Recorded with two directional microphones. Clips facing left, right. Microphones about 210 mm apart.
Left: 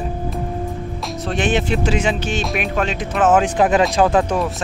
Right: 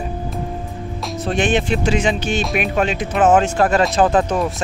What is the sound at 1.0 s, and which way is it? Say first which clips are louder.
Speech: right 2 dB; centre (ahead or behind).